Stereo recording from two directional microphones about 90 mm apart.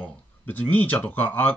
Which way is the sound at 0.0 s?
20° left (ahead or behind).